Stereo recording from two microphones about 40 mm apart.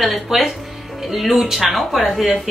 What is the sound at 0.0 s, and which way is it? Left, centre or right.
A woman's voice, centre.